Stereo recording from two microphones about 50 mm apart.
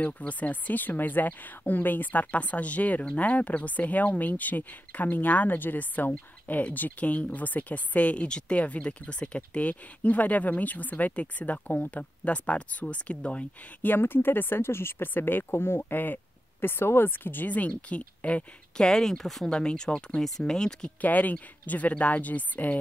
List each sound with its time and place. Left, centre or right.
0.0 s speech: left
13.8 s speech: left
18.8 s speech: centre
19.5 s speech: centre
21.0 s speech: left